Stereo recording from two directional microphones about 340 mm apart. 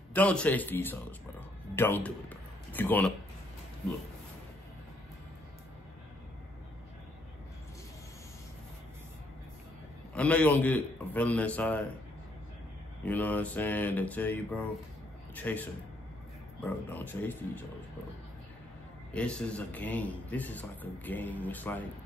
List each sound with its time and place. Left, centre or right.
0.1 s a man's voice: centre
10.1 s a man's voice: centre
13.0 s a man's voice: centre
19.1 s a man's voice: centre